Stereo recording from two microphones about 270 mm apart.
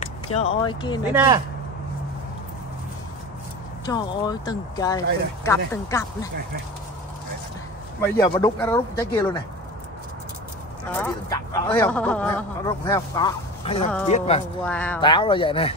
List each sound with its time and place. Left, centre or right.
0.0 s speech: left
1.1 s speech: centre
3.8 s speech: centre
8.0 s speech: centre
11.0 s speech: centre
14.6 s speech: centre
15.0 s speech: centre